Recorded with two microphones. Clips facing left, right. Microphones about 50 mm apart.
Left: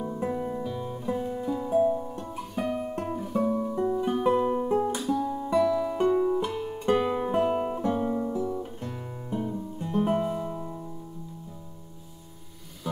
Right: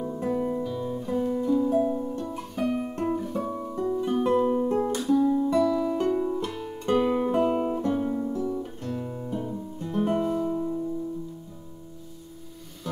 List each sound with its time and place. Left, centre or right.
0.0 s music: centre
3.7 s music: centre
4.1 s music: centre